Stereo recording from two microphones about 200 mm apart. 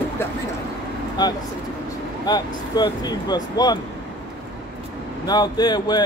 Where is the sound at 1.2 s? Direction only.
20° left (ahead or behind).